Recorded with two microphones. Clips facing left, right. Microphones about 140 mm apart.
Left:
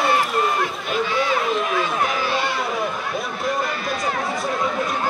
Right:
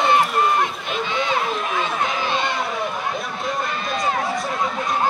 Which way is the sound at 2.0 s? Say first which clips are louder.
Left 1 dB; 20° right (ahead or behind).